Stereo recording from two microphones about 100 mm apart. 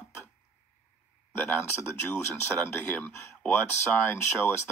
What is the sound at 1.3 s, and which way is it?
Speech, 20° left (ahead or behind).